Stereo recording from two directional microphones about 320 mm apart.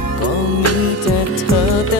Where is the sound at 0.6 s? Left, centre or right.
Left.